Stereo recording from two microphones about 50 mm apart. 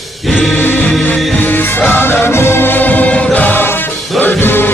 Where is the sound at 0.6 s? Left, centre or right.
Left.